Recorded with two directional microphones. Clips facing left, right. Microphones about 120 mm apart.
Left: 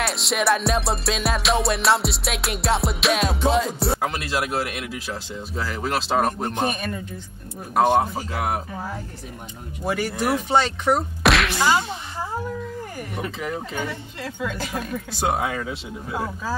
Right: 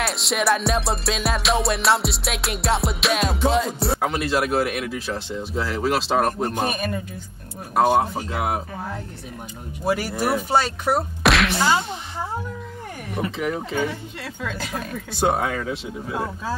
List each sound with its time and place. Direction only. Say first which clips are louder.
0.0 s music: even; centre (ahead or behind)
7.7 s music: even; 5° right (ahead or behind)
9.8 s music: right 1 dB; 5° right (ahead or behind)
13.2 s music: right 4 dB; 5° right (ahead or behind)
15.1 s music: right 3 dB; 5° left (ahead or behind)